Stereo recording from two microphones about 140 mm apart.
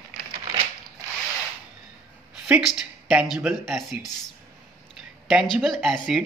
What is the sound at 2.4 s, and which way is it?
Speech, 10° right (ahead or behind).